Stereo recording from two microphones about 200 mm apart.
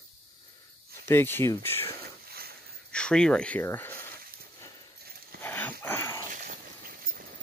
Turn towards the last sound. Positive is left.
turn(degrees=-40)  # may be behind; listen again after turning